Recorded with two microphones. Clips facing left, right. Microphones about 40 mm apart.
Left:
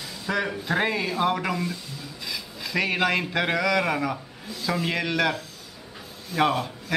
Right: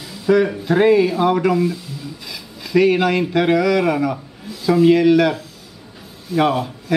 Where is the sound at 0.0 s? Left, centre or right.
Centre.